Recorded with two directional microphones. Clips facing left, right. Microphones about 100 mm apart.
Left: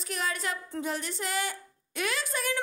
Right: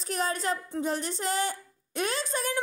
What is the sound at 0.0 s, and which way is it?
Speech, 35° right (ahead or behind).